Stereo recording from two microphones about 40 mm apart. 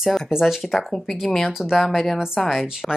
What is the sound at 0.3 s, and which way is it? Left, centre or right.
A woman's voice, centre.